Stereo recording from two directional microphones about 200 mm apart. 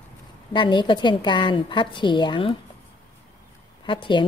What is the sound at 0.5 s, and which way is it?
A woman's voice, 25° left (ahead or behind).